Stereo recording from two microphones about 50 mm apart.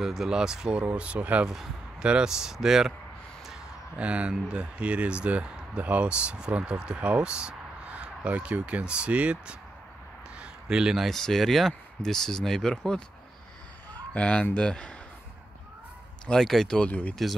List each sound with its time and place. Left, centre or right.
0.0 s speech: centre; by 1.4 s right
1.4 s speech: centre
4.0 s speech: right
10.4 s a sound: centre
11.1 s speech: centre
14.1 s speech: left
16.3 s speech: centre
17.1 s speech: centre